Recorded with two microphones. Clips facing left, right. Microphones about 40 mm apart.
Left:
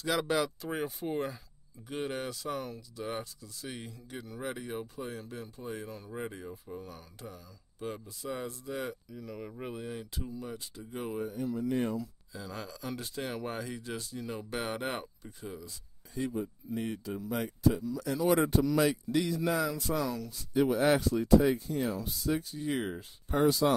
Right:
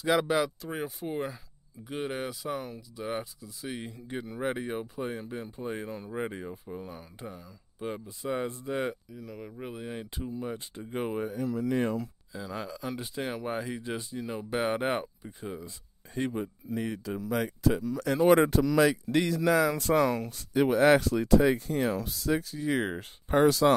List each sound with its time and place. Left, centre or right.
0.0 s speech: centre
0.6 s speech: centre
3.8 s speech: right
9.1 s speech: centre
9.8 s speech: right
11.6 s speech: right
12.3 s speech: centre
16.2 s speech: right
17.4 s speech: right
17.8 s speech: right
18.5 s speech: right
19.1 s speech: right
19.7 s speech: right
23.4 s speech: right